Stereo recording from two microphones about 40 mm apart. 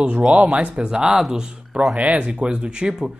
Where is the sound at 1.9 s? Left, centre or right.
Right.